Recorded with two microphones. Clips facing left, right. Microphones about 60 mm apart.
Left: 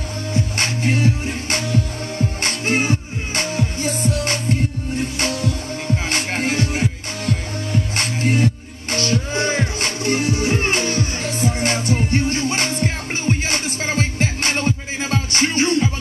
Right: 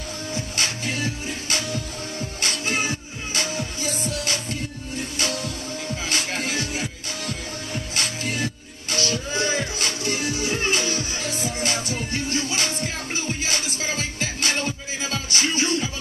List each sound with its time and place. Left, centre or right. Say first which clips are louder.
0.3 s music: left 6 dB; left